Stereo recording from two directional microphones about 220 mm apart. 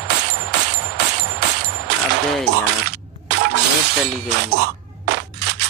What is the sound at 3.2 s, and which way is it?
Shatter, 50° right (ahead or behind).